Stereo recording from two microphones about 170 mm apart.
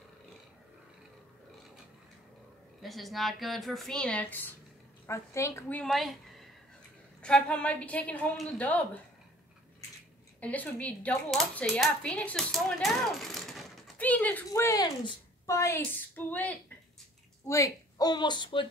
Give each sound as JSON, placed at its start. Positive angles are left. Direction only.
{"t": 2.8, "sound": "a woman's voice", "side_deg": 0}
{"t": 10.4, "sound": "speech", "side_deg": 10}
{"t": 14.5, "sound": "speech", "side_deg": 20}